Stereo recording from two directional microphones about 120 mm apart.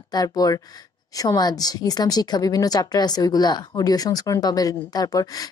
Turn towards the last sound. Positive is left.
turn(degrees=30)  # may be behind; listen again after turning